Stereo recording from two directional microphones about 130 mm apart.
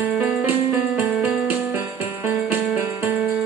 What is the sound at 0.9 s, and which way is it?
Music, centre (ahead or behind).